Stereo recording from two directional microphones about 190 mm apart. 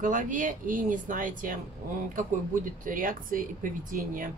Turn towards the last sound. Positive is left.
turn(degrees=-45)  # may be behind; listen again after turning